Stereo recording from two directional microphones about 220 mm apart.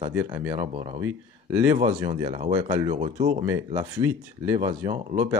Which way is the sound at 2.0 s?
20° right (ahead or behind).